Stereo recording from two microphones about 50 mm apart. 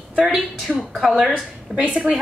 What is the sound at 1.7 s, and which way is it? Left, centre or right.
Speech, right.